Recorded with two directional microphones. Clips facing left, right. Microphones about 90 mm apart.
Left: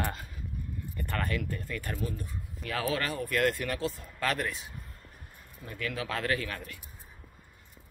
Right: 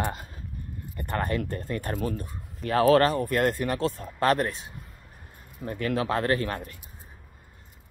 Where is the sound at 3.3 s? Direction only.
30° right (ahead or behind).